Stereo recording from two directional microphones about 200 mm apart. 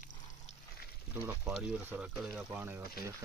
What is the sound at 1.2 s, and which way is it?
Speech, 5° right (ahead or behind).